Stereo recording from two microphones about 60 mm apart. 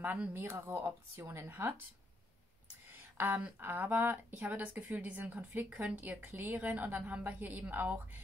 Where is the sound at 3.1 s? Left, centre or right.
Right.